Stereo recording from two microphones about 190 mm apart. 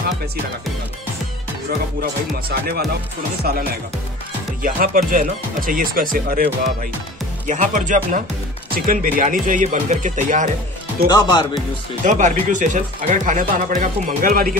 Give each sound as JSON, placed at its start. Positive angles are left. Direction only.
{"t": 2.5, "sound": "speech", "side_deg": -55}
{"t": 4.6, "sound": "speech", "side_deg": -45}
{"t": 11.1, "sound": "speech", "side_deg": 20}
{"t": 12.0, "sound": "speech", "side_deg": -40}